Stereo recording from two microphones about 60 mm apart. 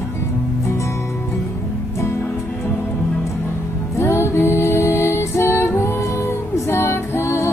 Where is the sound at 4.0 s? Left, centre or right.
Left.